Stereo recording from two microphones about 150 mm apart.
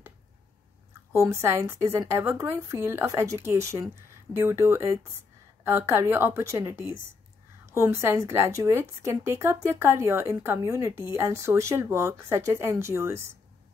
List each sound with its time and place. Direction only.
1.1 s a woman's voice: 20° right (ahead or behind)